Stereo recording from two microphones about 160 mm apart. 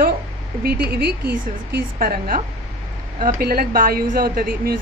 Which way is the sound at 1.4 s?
60° right (ahead or behind).